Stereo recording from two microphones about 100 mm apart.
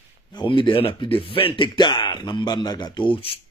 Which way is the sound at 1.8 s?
50° left (ahead or behind).